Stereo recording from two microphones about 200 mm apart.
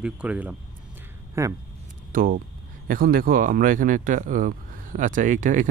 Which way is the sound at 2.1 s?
45° right (ahead or behind).